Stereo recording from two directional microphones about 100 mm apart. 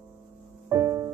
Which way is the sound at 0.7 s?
30° right (ahead or behind).